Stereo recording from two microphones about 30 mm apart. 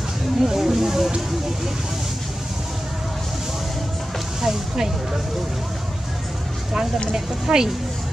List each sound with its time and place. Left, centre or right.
0.4 s speech: centre
4.4 s speech: centre
7.5 s speech: centre